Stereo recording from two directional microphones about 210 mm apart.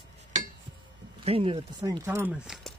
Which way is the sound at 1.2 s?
25° right (ahead or behind).